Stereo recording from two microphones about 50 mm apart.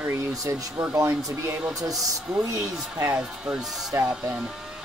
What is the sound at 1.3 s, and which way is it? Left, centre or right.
Speech, right.